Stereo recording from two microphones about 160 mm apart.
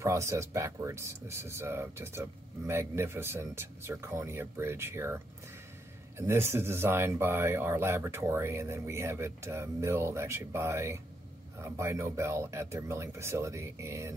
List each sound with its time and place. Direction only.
0.0 s speech: 20° right (ahead or behind)